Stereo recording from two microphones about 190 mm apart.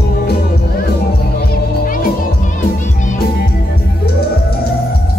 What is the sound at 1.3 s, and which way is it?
Music, 50° left (ahead or behind).